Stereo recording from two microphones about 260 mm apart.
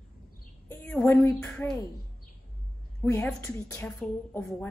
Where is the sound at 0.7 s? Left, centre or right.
Centre.